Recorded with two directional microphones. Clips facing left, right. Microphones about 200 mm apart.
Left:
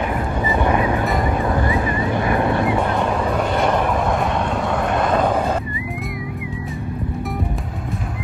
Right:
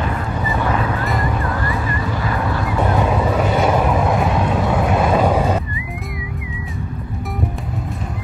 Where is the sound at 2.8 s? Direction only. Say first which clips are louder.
Right 2 dB; 5° right (ahead or behind).